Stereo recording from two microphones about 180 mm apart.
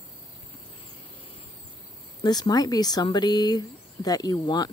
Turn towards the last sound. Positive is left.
turn(degrees=25)  # may be behind; listen again after turning